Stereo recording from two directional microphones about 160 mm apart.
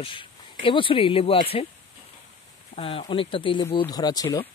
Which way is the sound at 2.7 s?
35° left (ahead or behind).